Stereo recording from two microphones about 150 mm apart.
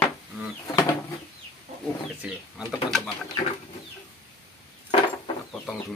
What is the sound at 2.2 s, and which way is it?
Speech, 5° right (ahead or behind).